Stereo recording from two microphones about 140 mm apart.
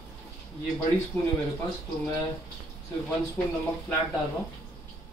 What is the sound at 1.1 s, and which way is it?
Speech, 15° left (ahead or behind).